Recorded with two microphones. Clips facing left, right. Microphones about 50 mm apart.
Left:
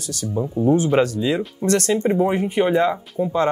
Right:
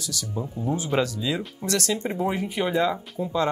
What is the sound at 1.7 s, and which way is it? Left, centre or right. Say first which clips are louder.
Speech: left 7 dB; left.